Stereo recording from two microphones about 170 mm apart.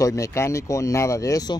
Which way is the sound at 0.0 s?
20° left (ahead or behind).